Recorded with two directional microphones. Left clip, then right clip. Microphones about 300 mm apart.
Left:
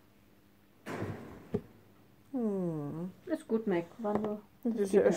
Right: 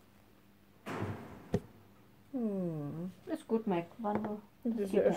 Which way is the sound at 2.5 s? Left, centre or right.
Centre.